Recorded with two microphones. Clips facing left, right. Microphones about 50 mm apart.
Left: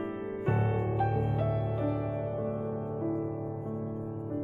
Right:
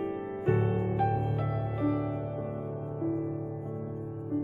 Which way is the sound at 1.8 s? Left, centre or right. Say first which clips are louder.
Right 2 dB; centre.